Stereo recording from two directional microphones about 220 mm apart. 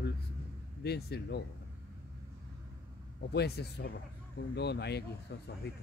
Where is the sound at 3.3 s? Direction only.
45° left (ahead or behind).